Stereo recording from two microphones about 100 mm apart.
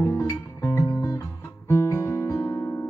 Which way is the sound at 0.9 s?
30° left (ahead or behind).